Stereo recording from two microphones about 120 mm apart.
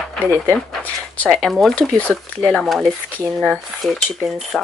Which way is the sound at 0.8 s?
15° left (ahead or behind).